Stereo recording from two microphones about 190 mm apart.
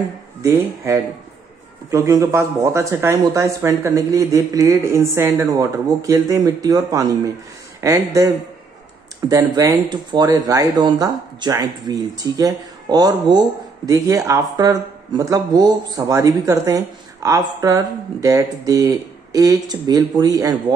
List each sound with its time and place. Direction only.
0.4 s speech: 15° right (ahead or behind)
9.3 s speech: 15° right (ahead or behind)